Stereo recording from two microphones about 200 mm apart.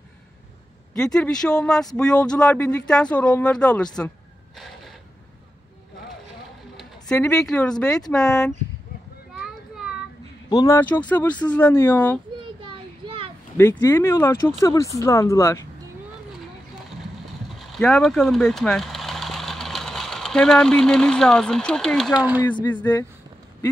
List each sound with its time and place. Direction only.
0.9 s speech: 5° left (ahead or behind)
6.8 s speech: 5° left (ahead or behind)
10.5 s speech: 15° left (ahead or behind)
12.4 s a sound: 25° right (ahead or behind)
13.6 s speech: 15° left (ahead or behind)
17.6 s speech: centre (ahead or behind)
22.7 s speech: 10° left (ahead or behind)